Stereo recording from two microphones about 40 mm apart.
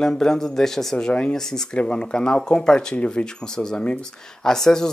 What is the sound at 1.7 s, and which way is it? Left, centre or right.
Speech, left.